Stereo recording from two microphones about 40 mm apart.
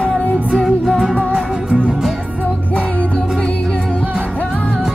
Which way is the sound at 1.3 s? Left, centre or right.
Right.